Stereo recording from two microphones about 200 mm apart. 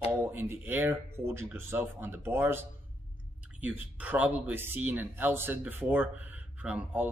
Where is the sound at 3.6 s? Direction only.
10° right (ahead or behind).